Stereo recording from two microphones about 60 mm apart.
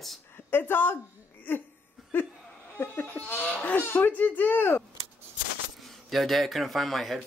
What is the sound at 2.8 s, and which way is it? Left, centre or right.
Speech, left.